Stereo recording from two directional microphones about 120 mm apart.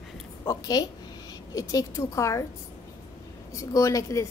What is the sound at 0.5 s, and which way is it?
A woman's voice, 30° left (ahead or behind).